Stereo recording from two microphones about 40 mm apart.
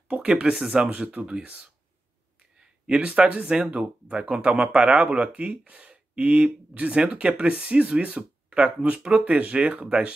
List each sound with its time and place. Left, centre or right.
0.3 s speech: right
1.1 s speech: right
2.9 s speech: right
3.7 s speech: right